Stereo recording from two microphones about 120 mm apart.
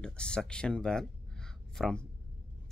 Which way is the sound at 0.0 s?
5° left (ahead or behind).